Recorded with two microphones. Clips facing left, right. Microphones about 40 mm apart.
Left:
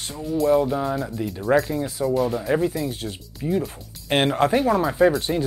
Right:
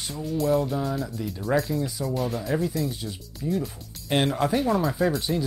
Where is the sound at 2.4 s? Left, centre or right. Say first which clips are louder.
Left 5 dB; left.